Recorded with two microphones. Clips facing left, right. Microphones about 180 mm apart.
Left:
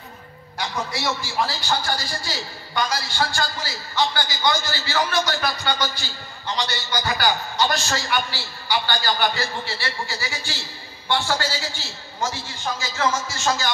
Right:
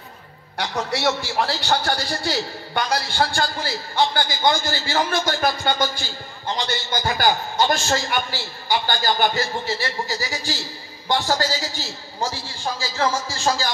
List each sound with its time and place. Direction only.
0.6 s a man's voice: 65° right (ahead or behind); by 13.7 s 35° right (ahead or behind)